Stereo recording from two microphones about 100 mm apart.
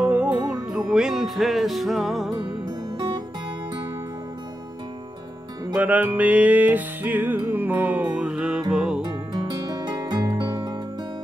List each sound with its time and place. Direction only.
0.0 s music: 15° right (ahead or behind)
2.3 s music: 40° right (ahead or behind)
5.7 s music: 15° right (ahead or behind)
9.0 s music: 45° right (ahead or behind)